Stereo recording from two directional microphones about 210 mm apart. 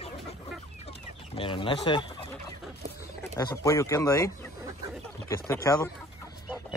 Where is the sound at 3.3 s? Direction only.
15° left (ahead or behind).